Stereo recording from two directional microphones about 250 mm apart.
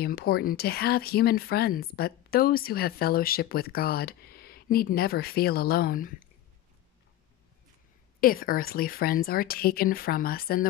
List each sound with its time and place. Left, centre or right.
0.0 s speech: left
8.2 s speech: left